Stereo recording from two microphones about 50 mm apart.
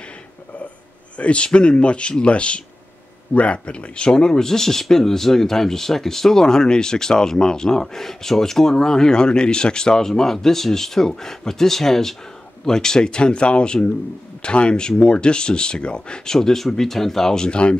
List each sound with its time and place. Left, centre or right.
1.1 s speech: left